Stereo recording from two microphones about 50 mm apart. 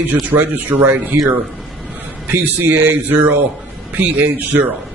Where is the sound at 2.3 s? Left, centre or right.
Right.